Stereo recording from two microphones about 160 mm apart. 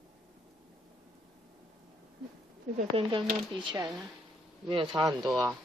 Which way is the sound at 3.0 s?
30° right (ahead or behind).